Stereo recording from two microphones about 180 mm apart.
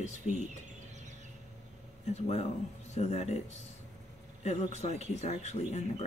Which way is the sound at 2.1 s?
35° left (ahead or behind).